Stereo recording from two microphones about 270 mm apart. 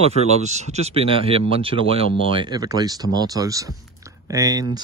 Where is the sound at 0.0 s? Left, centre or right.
Right.